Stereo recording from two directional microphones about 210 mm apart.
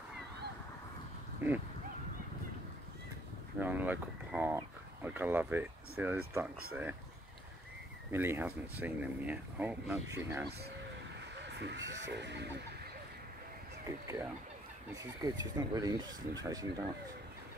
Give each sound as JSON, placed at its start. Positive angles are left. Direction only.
{"t": 1.4, "sound": "speech", "side_deg": -10}
{"t": 3.5, "sound": "speech", "side_deg": -10}
{"t": 8.1, "sound": "speech", "side_deg": -10}
{"t": 11.4, "sound": "speech", "side_deg": -55}
{"t": 15.0, "sound": "speech", "side_deg": -20}